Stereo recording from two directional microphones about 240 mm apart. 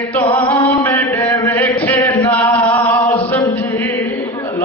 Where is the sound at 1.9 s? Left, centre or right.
Centre.